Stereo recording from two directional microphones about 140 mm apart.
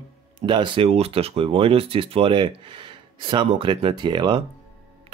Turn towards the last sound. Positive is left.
turn(degrees=-35)  # may be behind; listen again after turning